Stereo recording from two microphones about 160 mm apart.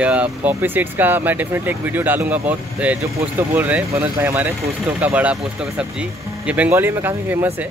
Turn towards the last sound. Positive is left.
turn(degrees=-10)  # may be behind; listen again after turning